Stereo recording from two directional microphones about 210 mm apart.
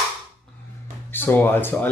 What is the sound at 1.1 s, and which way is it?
Speech, 10° left (ahead or behind).